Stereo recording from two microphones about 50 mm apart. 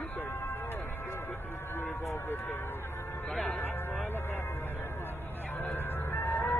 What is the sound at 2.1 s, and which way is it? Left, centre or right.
Vehicle, left.